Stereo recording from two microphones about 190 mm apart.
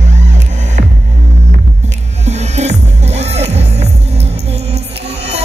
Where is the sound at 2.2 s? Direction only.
35° right (ahead or behind).